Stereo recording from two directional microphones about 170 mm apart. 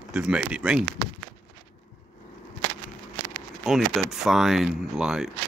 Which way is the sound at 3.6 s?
Centre (ahead or behind).